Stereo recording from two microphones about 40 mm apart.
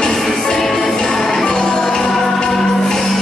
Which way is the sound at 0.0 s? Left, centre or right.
Centre.